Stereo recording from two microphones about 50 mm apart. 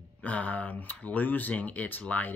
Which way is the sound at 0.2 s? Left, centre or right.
Left.